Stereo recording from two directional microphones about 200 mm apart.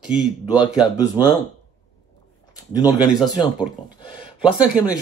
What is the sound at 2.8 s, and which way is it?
Speech, 20° left (ahead or behind).